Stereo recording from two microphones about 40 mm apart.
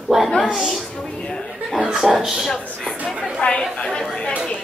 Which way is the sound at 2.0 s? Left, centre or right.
Centre.